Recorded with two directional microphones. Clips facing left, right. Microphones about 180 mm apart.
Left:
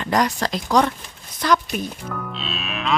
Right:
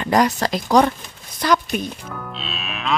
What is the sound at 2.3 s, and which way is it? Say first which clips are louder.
Livestock: left 1 dB; centre (ahead or behind).